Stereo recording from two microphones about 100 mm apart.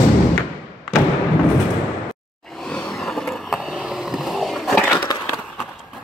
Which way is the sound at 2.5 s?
5° left (ahead or behind).